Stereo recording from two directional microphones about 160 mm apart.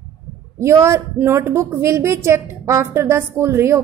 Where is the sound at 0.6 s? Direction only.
20° right (ahead or behind).